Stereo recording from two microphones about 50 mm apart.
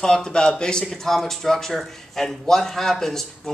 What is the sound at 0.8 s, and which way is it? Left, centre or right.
Speech, centre.